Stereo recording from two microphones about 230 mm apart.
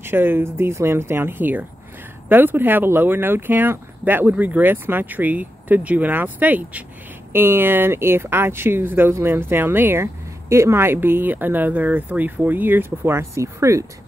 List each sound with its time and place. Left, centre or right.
0.0 s speech: centre